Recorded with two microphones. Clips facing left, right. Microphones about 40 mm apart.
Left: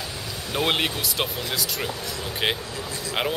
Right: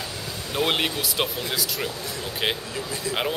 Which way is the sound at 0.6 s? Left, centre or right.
Centre.